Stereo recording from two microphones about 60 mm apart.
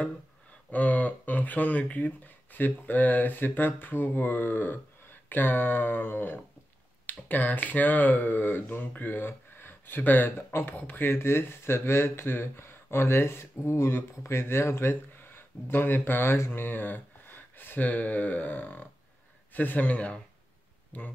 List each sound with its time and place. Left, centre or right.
0.7 s speech: left